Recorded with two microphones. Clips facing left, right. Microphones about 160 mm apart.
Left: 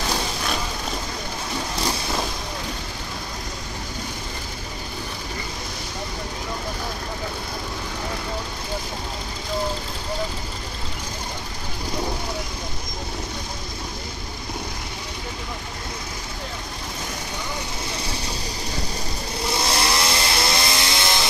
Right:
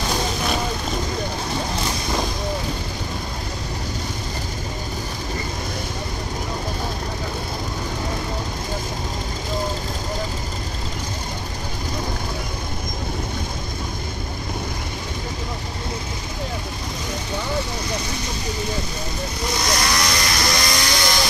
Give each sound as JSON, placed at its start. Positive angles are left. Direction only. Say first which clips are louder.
{"t": 19.6, "sound": "vehicle", "louder": "right 1 dB", "side_deg": 30}